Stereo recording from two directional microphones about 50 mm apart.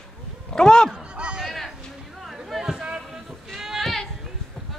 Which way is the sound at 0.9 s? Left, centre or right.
Centre.